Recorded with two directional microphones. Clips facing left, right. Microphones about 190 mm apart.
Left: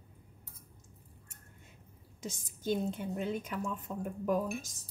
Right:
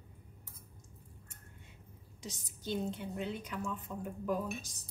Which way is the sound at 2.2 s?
50° left (ahead or behind).